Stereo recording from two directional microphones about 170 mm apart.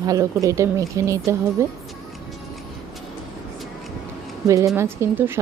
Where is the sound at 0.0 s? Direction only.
20° right (ahead or behind).